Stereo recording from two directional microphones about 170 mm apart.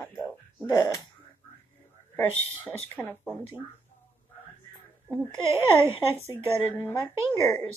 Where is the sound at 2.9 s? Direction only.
10° left (ahead or behind).